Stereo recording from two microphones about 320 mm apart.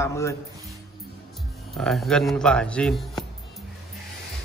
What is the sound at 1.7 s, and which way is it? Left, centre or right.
Speech, centre.